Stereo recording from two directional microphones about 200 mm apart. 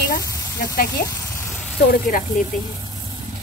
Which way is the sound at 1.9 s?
45° left (ahead or behind).